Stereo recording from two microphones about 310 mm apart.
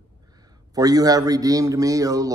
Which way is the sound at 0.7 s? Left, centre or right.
Centre.